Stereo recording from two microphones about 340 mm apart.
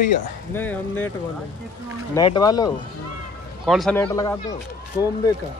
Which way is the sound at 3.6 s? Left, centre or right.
Centre.